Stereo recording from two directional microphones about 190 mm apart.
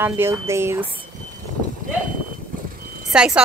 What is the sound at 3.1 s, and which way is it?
Speech, 5° right (ahead or behind).